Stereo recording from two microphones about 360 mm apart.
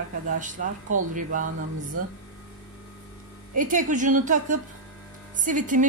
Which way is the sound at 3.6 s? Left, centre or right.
Right.